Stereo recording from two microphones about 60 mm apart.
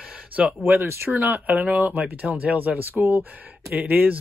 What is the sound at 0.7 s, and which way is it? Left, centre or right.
Speech, right.